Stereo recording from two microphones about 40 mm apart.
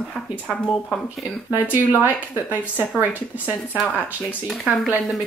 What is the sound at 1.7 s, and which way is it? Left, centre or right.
A woman's voice, right.